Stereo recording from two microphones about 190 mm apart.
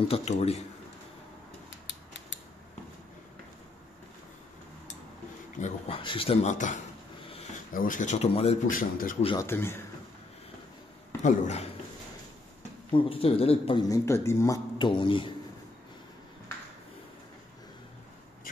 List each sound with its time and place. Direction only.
0.1 s speech: 35° left (ahead or behind)
1.7 s scissors: 70° left (ahead or behind)
5.6 s a man's voice: 30° left (ahead or behind)
8.7 s speech: 45° left (ahead or behind)
9.4 s speech: 10° left (ahead or behind)
11.2 s speech: 35° left (ahead or behind)
12.9 s a man's voice: 30° left (ahead or behind)
13.8 s speech: 15° left (ahead or behind)